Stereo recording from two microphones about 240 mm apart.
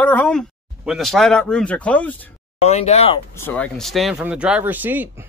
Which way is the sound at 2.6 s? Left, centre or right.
Left.